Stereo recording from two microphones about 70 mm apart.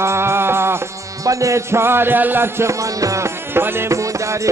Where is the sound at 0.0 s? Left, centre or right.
Right.